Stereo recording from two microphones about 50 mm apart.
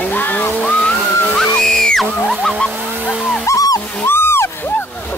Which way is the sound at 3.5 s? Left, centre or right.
Left.